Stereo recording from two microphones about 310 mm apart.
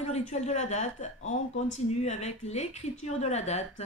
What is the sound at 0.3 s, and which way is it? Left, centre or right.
Speech, left.